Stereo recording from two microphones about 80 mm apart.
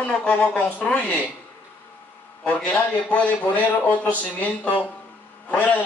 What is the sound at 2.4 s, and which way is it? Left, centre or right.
A man's voice, centre.